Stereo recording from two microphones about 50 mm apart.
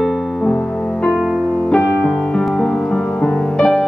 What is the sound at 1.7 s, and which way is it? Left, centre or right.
Music, centre.